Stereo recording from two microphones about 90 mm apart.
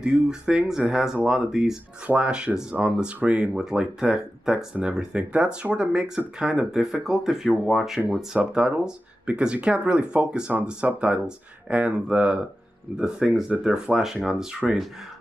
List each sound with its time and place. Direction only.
0.0 s speech: 10° right (ahead or behind)
13.5 s speech: 15° right (ahead or behind)